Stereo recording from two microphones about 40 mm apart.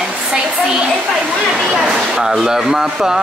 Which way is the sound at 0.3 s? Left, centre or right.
Centre.